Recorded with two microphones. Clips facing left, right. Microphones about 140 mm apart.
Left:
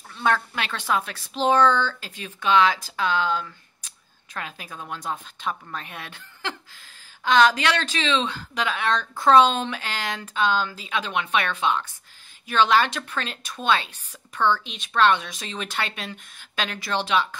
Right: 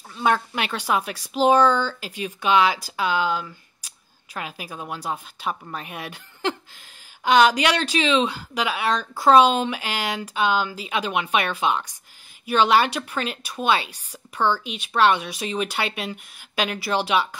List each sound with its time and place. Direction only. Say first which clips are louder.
0.1 s speech: right 2 dB; 15° right (ahead or behind)